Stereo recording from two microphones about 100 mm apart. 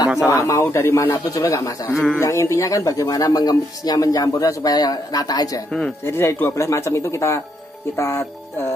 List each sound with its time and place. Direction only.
0.3 s speech: 35° left (ahead or behind)
5.7 s a man's voice: 10° left (ahead or behind)
6.0 s speech: 25° left (ahead or behind)